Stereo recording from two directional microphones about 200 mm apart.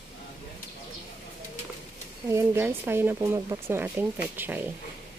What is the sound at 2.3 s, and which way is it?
Speech, 10° right (ahead or behind).